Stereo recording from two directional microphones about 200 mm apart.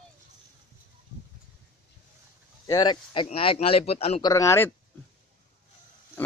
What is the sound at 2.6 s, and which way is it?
A man's voice, 20° left (ahead or behind).